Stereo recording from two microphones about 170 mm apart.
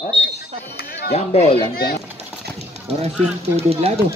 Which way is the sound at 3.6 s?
35° right (ahead or behind).